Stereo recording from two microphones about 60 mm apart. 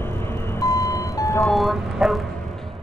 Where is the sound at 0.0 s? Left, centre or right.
Left.